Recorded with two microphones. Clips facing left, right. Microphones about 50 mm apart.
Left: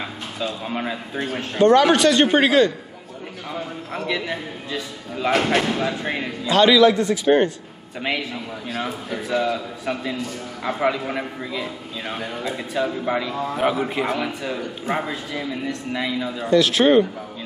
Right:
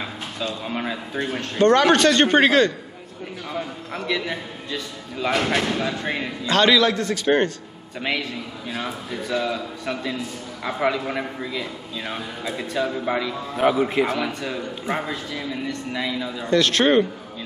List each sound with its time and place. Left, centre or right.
0.0 s a man's voice: centre